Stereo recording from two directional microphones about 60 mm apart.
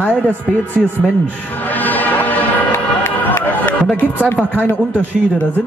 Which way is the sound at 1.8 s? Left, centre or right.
Left.